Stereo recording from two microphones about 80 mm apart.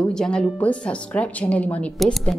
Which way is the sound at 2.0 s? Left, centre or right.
Centre.